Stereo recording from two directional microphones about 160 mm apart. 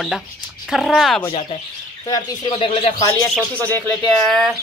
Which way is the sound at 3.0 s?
20° left (ahead or behind).